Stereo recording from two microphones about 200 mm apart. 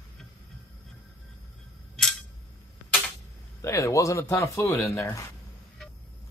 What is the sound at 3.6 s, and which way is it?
Speech, 15° left (ahead or behind).